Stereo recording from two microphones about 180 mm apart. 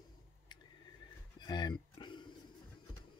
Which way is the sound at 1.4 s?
25° left (ahead or behind).